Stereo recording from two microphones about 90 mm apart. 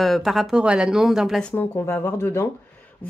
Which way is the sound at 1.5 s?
25° left (ahead or behind).